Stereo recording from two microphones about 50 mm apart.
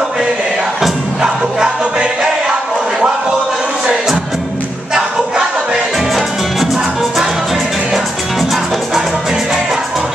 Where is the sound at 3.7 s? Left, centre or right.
Centre.